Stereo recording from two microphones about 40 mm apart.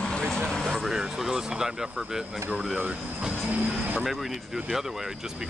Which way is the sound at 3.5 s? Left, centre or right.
Right.